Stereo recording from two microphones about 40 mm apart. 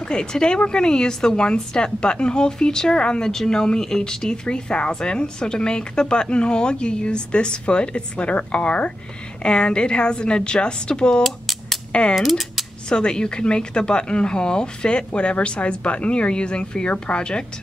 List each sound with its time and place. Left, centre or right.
0.1 s a woman's voice: centre
11.2 s a sound: centre
11.9 s speech: left
12.2 s speech: centre
12.9 s a woman's voice: left